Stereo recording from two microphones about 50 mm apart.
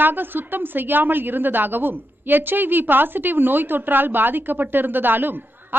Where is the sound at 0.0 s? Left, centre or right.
Right.